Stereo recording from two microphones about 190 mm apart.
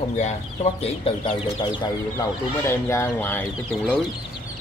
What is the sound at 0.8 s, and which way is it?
Speech, 30° left (ahead or behind).